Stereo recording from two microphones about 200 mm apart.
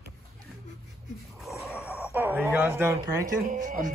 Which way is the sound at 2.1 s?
10° right (ahead or behind).